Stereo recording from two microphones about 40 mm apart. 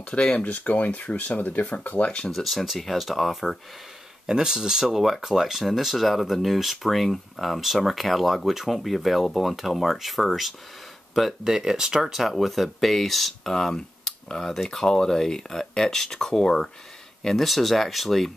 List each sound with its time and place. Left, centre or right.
0.4 s speech: left
2.3 s speech: centre
4.3 s speech: centre
4.8 s speech: centre
11.4 s speech: centre